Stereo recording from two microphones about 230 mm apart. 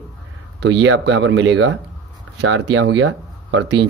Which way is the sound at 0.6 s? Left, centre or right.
Right.